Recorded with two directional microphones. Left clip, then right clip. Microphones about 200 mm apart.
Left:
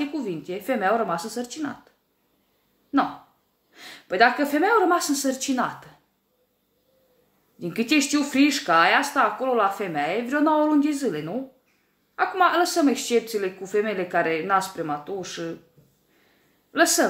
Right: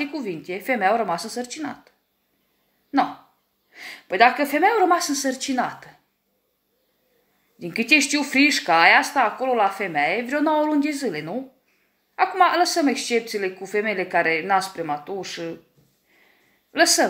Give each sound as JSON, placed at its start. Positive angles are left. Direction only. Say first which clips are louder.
{"t": 0.0, "sound": "speech", "louder": "right 1 dB", "side_deg": 0}
{"t": 3.7, "sound": "speech", "louder": "right 2 dB", "side_deg": 0}
{"t": 8.3, "sound": "speech", "louder": "right 4 dB", "side_deg": -5}
{"t": 16.7, "sound": "speech", "louder": "right 2 dB", "side_deg": 0}